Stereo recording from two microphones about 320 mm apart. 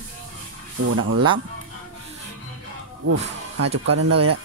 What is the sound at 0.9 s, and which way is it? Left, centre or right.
Speech, right.